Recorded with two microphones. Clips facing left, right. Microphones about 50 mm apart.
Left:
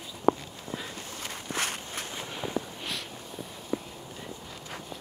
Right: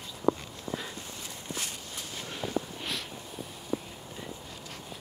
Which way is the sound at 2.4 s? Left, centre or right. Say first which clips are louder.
Even; centre.